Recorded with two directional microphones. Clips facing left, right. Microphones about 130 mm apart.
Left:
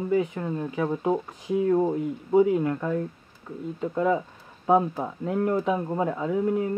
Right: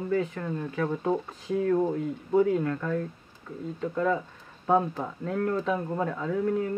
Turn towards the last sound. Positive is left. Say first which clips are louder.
# left 2 dB
turn(degrees=15)  # may be behind; listen again after turning